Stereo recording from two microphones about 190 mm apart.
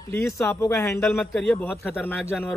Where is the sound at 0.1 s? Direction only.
15° left (ahead or behind).